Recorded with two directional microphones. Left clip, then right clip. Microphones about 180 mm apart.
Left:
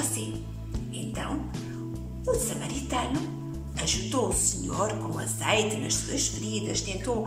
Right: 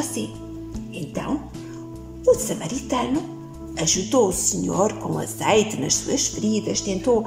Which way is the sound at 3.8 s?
35° right (ahead or behind).